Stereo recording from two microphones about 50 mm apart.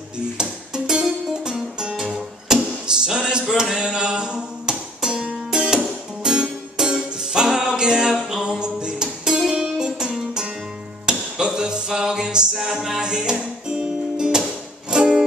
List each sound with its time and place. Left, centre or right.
0.4 s music: centre
12.5 s music: centre
13.0 s music: centre